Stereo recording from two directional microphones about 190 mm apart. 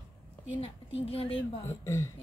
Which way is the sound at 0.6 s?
30° left (ahead or behind).